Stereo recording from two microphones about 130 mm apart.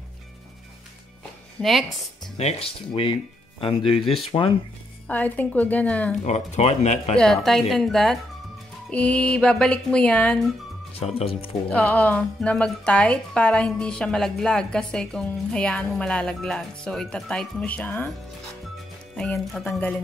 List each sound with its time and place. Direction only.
1.6 s a woman's voice: centre (ahead or behind)
2.3 s speech: 50° left (ahead or behind)
5.0 s speech: 10° left (ahead or behind)
6.2 s speech: 60° left (ahead or behind)
7.2 s a woman's voice: 5° left (ahead or behind)
11.1 s speech: 45° left (ahead or behind)
11.7 s speech: 10° left (ahead or behind)